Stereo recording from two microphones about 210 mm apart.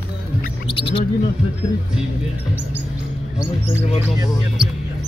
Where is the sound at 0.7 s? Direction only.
25° left (ahead or behind).